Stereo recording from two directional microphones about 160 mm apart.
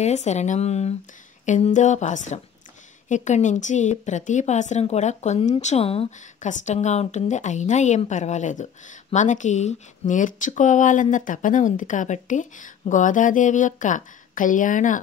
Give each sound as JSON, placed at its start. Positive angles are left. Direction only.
{"t": 0.0, "sound": "speech", "side_deg": 45}